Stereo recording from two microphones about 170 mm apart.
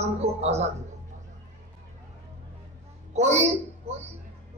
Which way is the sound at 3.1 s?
40° right (ahead or behind).